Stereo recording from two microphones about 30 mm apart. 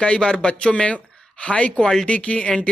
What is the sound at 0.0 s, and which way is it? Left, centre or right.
Speech, left.